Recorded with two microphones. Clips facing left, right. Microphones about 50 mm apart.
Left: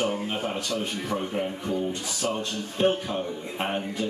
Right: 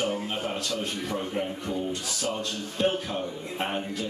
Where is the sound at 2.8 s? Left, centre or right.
Left.